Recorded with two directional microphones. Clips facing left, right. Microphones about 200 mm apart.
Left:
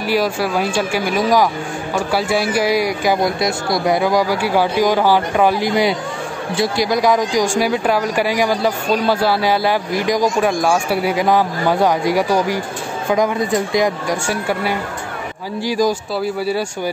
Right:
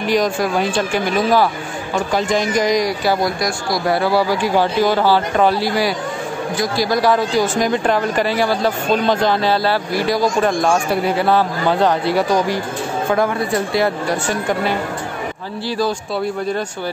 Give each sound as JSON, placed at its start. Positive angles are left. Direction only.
{"t": 0.0, "sound": "speech", "side_deg": 5}
{"t": 3.2, "sound": "speech", "side_deg": 25}
{"t": 6.9, "sound": "speech", "side_deg": 15}